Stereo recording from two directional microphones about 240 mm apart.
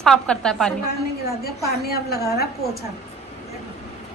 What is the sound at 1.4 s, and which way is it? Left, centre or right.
Speech, left.